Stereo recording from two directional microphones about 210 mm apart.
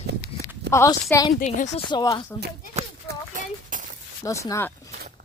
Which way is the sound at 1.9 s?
20° left (ahead or behind).